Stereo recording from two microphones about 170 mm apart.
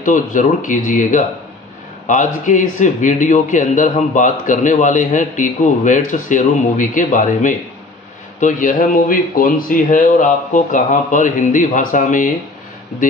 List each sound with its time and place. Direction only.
0.0 s a man's voice: 50° left (ahead or behind)